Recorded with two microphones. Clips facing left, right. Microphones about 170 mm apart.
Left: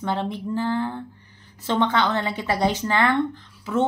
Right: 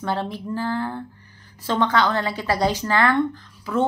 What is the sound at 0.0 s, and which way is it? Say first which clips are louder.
A woman's voice: even; 20° left (ahead or behind).